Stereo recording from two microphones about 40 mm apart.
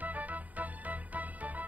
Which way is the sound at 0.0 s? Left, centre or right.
Right.